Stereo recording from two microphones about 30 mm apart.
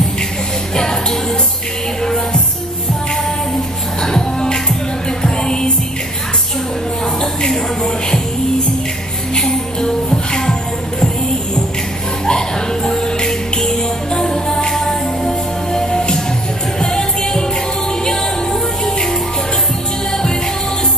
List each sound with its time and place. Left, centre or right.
4.0 s music: left
7.5 s music: centre
9.8 s music: left
12.3 s music: left